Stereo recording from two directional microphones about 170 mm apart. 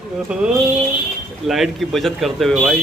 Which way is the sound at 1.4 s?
Centre (ahead or behind).